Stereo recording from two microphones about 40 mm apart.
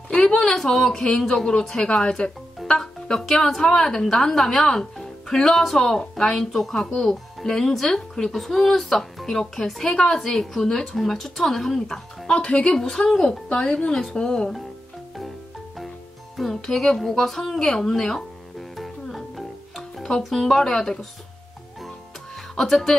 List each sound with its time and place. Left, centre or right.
0.6 s speech: centre
2.6 s music: centre
3.1 s speech: centre
12.3 s speech: left
16.4 s speech: centre
17.9 s music: centre
19.7 s music: centre
20.2 s speech: centre
22.6 s speech: centre